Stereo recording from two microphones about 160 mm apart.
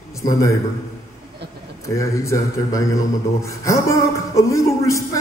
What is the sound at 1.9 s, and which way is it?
A man's voice, 20° left (ahead or behind).